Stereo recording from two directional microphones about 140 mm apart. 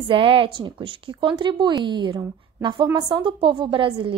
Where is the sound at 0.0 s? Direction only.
40° right (ahead or behind).